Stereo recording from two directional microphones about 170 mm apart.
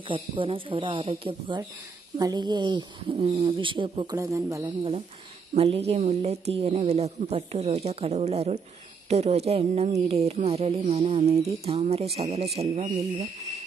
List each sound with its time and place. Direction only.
0.1 s speech: 30° right (ahead or behind)
4.1 s speech: 20° right (ahead or behind)
5.5 s speech: 35° right (ahead or behind)